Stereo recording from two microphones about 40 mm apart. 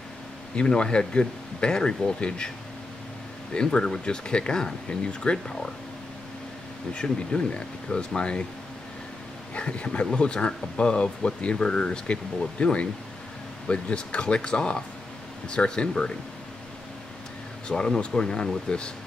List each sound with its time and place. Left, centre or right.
0.6 s speech: left
3.5 s speech: left
6.9 s speech: left
9.6 s speech: left
17.6 s speech: left